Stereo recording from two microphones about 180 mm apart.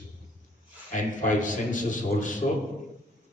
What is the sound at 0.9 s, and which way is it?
A man's voice, 45° left (ahead or behind).